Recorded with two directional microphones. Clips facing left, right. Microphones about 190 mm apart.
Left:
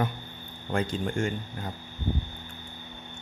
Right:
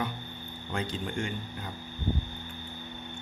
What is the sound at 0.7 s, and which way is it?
Speech, 45° left (ahead or behind).